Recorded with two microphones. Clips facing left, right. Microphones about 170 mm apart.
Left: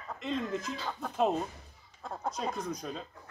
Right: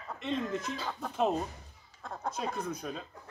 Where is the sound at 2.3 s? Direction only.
5° right (ahead or behind).